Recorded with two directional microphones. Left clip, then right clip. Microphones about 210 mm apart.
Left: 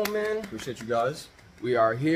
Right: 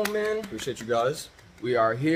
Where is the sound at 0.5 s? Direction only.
20° right (ahead or behind).